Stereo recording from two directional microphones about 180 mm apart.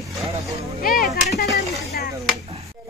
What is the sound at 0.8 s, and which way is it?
Speech, 55° left (ahead or behind).